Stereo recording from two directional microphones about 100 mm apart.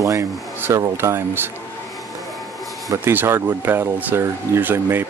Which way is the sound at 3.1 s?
20° right (ahead or behind).